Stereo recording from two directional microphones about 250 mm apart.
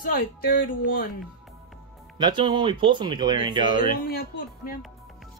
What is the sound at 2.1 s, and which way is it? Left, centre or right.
Speech, centre.